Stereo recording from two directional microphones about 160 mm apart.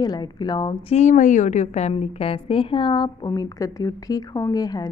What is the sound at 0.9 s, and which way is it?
A woman's voice, 50° left (ahead or behind).